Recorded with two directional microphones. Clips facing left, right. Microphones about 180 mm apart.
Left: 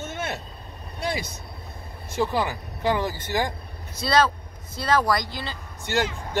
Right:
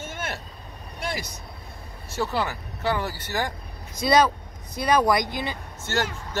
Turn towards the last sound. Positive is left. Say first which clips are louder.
# left 2 dB
turn(degrees=15)  # may be behind; listen again after turning